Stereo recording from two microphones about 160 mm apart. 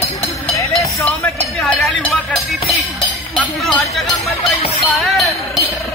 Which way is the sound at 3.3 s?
Centre (ahead or behind).